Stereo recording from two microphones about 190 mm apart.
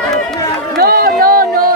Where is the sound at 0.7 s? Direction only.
55° right (ahead or behind).